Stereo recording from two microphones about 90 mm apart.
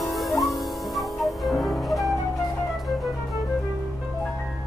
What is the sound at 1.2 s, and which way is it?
Music, centre (ahead or behind).